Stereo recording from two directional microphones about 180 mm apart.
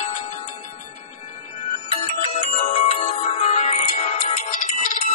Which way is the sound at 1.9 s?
35° left (ahead or behind).